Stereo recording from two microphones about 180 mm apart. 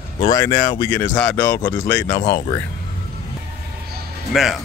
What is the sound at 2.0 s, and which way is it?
Speech, 20° left (ahead or behind).